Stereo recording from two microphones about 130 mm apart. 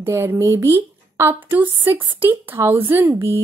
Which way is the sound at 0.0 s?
15° right (ahead or behind).